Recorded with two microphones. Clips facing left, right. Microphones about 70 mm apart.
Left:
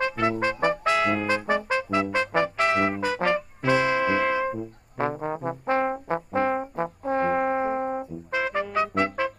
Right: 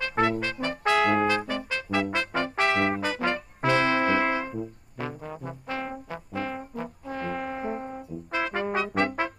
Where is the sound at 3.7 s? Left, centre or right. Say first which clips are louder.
Left 1 dB; right.